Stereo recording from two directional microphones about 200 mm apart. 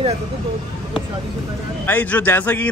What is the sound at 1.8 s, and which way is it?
Speech, 10° left (ahead or behind).